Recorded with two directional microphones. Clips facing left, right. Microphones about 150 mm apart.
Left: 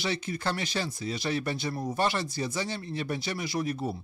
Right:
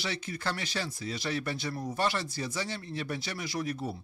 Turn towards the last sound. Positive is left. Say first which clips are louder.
# left 3 dB
turn(degrees=20)  # may be behind; listen again after turning